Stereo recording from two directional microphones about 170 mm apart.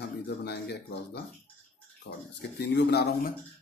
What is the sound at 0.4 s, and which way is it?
Speech, 75° left (ahead or behind).